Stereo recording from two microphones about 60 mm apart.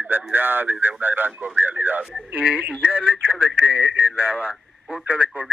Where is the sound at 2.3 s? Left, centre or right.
Right.